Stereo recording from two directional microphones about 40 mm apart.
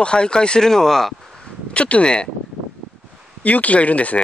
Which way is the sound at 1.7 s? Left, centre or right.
Left.